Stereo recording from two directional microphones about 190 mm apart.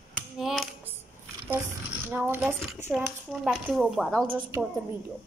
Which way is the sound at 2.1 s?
10° right (ahead or behind).